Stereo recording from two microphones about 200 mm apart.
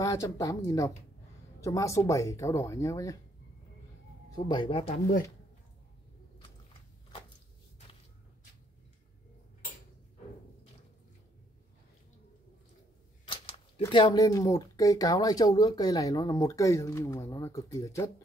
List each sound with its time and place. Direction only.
0.0 s speech: 15° left (ahead or behind)
4.5 s speech: 25° left (ahead or behind)
13.3 s speech: 25° left (ahead or behind)